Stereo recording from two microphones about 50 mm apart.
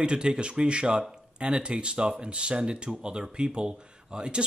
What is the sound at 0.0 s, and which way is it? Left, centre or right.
Speech, centre.